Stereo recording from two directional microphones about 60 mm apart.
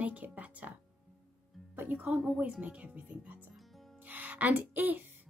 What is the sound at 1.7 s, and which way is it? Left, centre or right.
A woman's voice, right.